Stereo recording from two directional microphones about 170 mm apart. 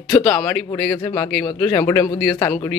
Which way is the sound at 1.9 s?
20° left (ahead or behind).